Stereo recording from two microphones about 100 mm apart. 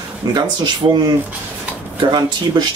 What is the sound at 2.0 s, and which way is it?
Speech, 50° right (ahead or behind).